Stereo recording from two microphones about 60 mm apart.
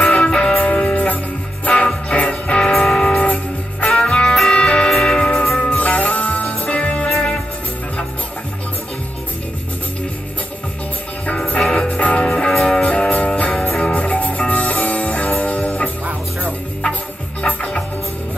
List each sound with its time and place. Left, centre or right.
0.0 s music: centre
11.2 s music: centre
13.5 s music: centre
17.4 s music: centre